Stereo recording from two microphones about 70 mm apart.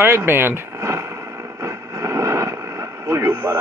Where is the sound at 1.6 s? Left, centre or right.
Right.